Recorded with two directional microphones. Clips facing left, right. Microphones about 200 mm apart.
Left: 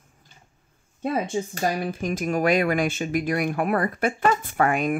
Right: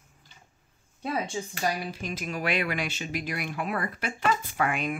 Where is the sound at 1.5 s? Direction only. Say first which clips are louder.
Left 2 dB; 50° left (ahead or behind).